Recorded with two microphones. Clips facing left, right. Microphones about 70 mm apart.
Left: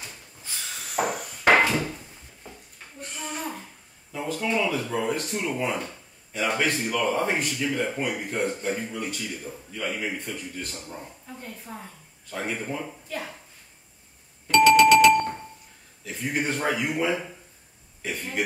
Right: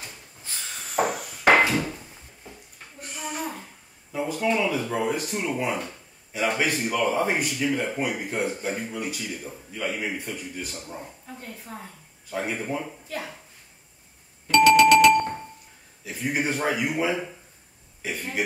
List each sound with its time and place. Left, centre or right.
0.9 s hammer: centre
3.0 s a sound: centre
4.1 s speech: centre
14.5 s doorbell: centre
16.0 s speech: centre